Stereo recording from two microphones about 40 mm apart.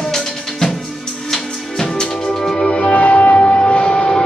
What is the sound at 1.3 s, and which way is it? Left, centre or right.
Music, centre.